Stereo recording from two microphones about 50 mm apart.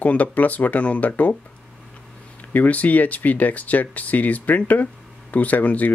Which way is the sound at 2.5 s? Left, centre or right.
Left.